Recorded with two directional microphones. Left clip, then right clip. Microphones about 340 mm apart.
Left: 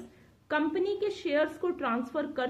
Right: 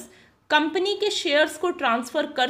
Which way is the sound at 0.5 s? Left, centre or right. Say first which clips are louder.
Right 8 dB; centre.